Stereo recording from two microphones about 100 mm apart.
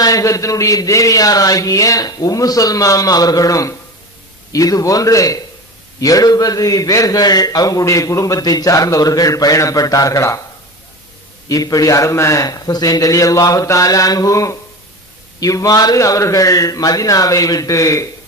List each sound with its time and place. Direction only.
0.0 s a man's voice: 35° left (ahead or behind)
11.4 s a man's voice: 35° left (ahead or behind)